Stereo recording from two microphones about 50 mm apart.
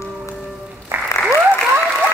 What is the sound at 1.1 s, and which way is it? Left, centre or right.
Applause, left.